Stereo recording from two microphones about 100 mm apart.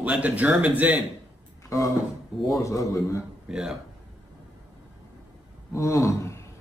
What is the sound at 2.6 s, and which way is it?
Speech, 30° left (ahead or behind).